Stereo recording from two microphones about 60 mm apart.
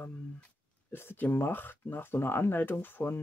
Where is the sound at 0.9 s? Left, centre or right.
Left.